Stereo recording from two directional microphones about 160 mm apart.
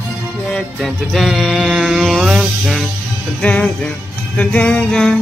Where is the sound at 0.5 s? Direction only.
Centre (ahead or behind).